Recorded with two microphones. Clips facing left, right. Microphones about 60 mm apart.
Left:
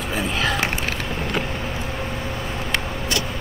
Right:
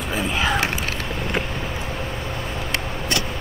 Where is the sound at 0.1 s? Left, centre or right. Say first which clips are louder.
Right 1 dB; centre.